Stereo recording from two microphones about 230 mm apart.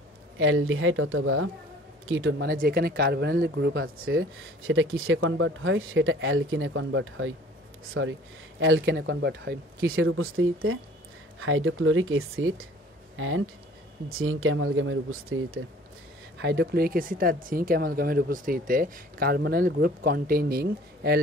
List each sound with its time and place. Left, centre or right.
0.4 s speech: right
2.5 s speech: right
9.9 s speech: right
16.3 s speech: right